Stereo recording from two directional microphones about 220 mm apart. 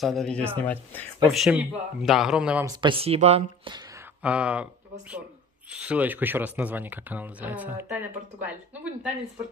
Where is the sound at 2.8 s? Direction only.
25° right (ahead or behind).